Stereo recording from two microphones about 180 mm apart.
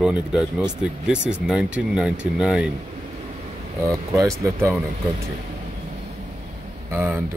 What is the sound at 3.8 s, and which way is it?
Speech, 15° right (ahead or behind).